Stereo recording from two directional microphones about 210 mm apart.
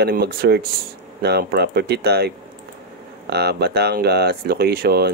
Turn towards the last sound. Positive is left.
turn(degrees=-50)  # may be behind; listen again after turning